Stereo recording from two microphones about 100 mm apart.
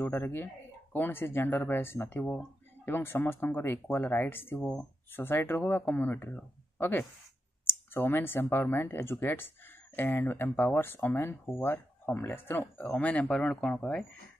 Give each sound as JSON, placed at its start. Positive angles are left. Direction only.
{"t": 0.0, "sound": "speech", "side_deg": 20}
{"t": 12.8, "sound": "speech", "side_deg": 10}